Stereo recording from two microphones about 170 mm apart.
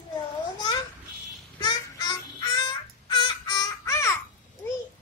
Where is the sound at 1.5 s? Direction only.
25° left (ahead or behind).